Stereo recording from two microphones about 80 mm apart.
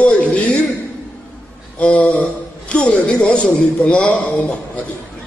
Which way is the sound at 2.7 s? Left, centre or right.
Centre.